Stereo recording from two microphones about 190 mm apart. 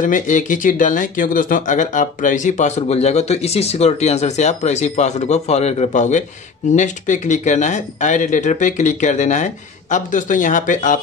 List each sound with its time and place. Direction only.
0.0 s speech: 40° left (ahead or behind)